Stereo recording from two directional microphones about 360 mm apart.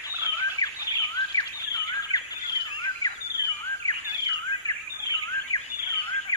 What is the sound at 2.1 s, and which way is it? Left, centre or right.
Bird, centre.